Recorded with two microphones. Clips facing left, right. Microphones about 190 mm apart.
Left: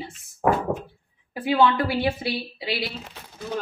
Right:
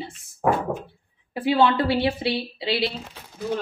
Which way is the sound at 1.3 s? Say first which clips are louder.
Right 1 dB; 25° right (ahead or behind).